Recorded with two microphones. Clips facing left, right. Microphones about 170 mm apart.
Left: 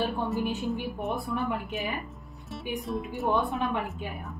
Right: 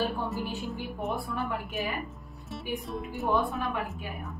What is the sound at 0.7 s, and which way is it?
A woman's voice, 20° left (ahead or behind).